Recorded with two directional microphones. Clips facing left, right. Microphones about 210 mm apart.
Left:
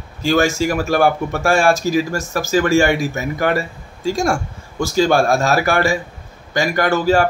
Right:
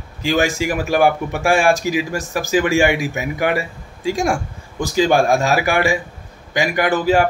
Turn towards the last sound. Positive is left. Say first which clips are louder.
# left 1 dB
turn(degrees=-15)  # may be behind; listen again after turning